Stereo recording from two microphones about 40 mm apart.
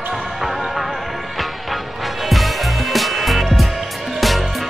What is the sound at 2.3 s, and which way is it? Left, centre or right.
Music, centre.